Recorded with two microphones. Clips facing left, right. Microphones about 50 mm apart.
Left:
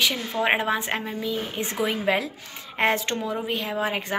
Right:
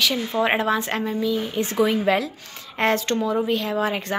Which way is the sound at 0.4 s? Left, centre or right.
Centre.